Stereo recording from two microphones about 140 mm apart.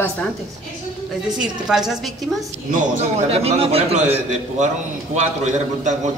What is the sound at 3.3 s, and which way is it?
Speech, 45° right (ahead or behind).